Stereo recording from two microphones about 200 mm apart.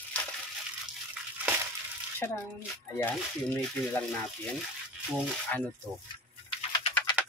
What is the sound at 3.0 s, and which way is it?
Speech, 10° left (ahead or behind).